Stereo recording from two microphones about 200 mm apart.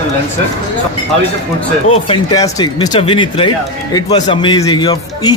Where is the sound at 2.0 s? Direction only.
25° left (ahead or behind).